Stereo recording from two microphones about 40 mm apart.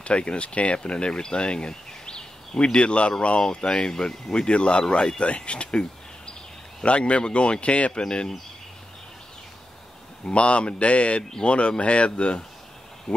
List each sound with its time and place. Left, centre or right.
0.0 s speech: left
10.2 s speech: left